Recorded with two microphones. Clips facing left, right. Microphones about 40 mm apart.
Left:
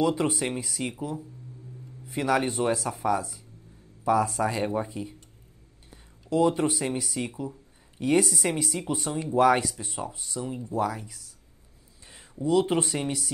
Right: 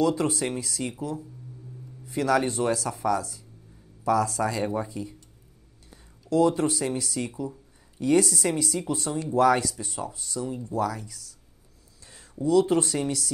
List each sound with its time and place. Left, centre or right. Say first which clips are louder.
0.0 s speech: right 1 dB; centre
2.0 s speech: right 2 dB; centre
6.3 s speech: right 1 dB; centre
12.4 s speech: right 2 dB; centre